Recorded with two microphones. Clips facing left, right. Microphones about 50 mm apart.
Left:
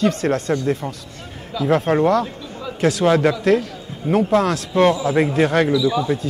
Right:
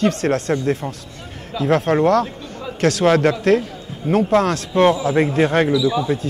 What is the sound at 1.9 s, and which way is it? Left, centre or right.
Speech, left.